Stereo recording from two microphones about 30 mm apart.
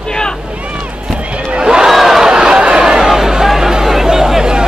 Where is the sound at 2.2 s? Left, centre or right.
Right.